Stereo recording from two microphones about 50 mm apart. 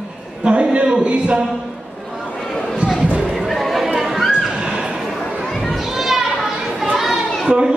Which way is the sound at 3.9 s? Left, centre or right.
Centre.